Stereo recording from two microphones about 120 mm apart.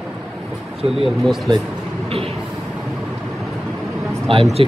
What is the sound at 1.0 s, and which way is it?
Speech, centre (ahead or behind).